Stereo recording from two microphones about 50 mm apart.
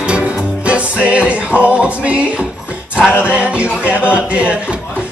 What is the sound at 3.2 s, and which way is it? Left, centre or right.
Music, right.